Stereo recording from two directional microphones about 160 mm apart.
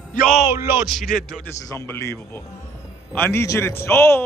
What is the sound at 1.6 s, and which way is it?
A man's voice, 20° left (ahead or behind).